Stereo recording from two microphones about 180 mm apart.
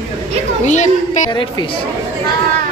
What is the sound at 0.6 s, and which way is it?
Speech, 40° left (ahead or behind).